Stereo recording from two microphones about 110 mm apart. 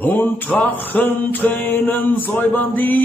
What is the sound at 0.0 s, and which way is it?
Speech, 15° left (ahead or behind).